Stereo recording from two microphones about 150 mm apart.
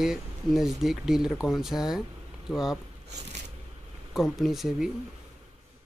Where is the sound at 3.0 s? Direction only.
50° right (ahead or behind).